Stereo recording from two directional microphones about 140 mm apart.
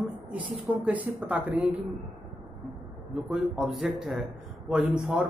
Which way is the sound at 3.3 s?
5° right (ahead or behind).